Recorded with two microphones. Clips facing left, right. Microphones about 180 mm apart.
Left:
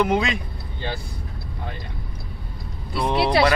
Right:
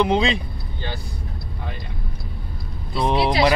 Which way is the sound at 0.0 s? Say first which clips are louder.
Right 2 dB; 20° right (ahead or behind).